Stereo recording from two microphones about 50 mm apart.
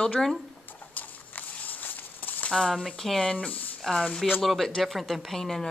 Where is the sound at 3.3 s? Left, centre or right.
Centre.